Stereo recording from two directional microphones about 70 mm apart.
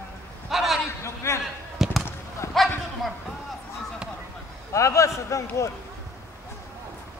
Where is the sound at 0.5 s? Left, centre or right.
Centre.